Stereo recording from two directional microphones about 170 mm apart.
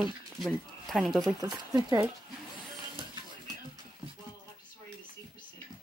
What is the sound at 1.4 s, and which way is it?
Speech, 25° right (ahead or behind).